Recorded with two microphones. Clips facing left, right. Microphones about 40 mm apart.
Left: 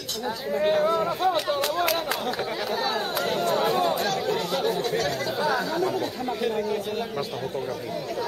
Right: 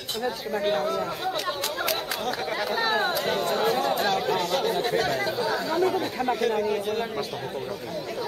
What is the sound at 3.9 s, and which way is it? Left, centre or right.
Speech, centre.